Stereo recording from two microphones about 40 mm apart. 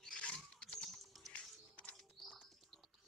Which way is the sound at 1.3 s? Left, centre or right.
Left.